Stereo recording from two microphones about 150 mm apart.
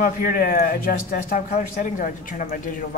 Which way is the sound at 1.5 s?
60° left (ahead or behind).